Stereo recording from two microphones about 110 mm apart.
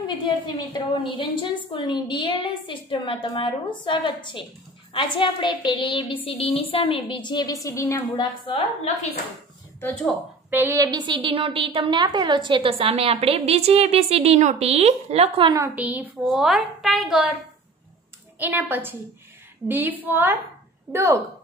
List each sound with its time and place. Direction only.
0.0 s a woman's voice: 40° left (ahead or behind)
6.2 s a woman's voice: 60° left (ahead or behind); by 7.5 s 40° left (ahead or behind)
7.6 s a woman's voice: 25° left (ahead or behind)
8.9 s a woman's voice: 80° left
10.5 s a woman's voice: 20° right (ahead or behind)
10.8 s a woman's voice: 40° right (ahead or behind); by 15.4 s 70° right (ahead or behind)
15.6 s a woman's voice: 15° right (ahead or behind)
18.4 s a woman's voice: 15° right (ahead or behind)